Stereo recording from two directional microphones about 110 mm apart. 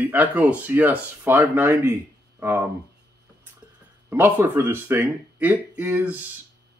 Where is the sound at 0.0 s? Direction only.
15° right (ahead or behind).